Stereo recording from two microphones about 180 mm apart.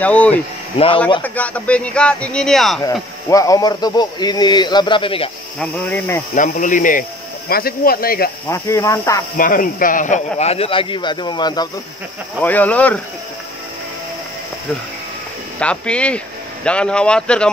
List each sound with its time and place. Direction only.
0.0 s speech: 10° left (ahead or behind)
2.8 s speech: 15° left (ahead or behind)
5.6 s speech: 10° left (ahead or behind)
6.3 s speech: 45° left (ahead or behind)
8.5 s speech: 15° left (ahead or behind)
9.4 s a man's voice: 50° left (ahead or behind); by 11.7 s 25° left (ahead or behind)
12.4 s speech: 10° left (ahead or behind)
15.6 s speech: 5° left (ahead or behind)